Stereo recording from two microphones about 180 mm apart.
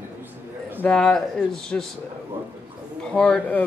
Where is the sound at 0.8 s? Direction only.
5° left (ahead or behind).